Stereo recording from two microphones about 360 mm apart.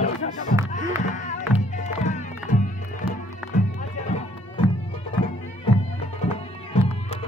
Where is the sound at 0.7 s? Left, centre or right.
Left.